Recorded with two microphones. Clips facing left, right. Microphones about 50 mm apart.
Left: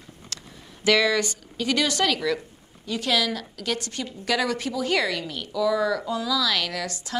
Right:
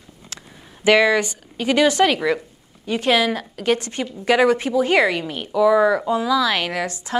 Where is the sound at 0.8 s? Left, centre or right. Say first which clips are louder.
Right 5 dB; right.